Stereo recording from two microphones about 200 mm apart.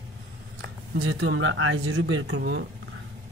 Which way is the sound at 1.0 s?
85° right.